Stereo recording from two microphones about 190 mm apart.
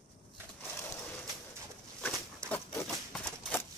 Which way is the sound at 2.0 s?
5° left (ahead or behind).